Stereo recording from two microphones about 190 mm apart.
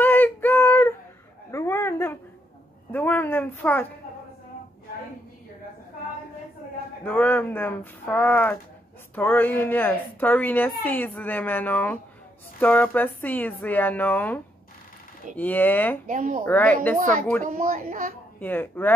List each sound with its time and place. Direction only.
0.0 s child singing: 10° left (ahead or behind)
1.5 s a sound: 15° left (ahead or behind)
2.9 s a woman's voice: 10° left (ahead or behind)
7.1 s a woman's voice: 10° left (ahead or behind)
16.1 s a child's voice: 45° right (ahead or behind)
16.4 s a woman's voice: 10° left (ahead or behind)
16.9 s a child's voice: 45° right (ahead or behind)
18.4 s a woman's voice: 10° left (ahead or behind)